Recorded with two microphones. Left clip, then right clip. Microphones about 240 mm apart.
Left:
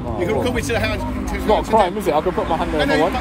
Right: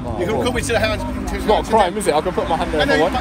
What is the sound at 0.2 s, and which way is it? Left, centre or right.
Speech, centre.